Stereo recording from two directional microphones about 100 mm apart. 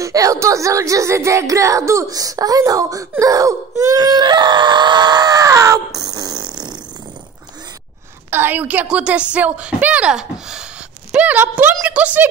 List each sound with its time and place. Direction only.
0.0 s speech: 35° right (ahead or behind)
8.3 s a woman's voice: 20° right (ahead or behind)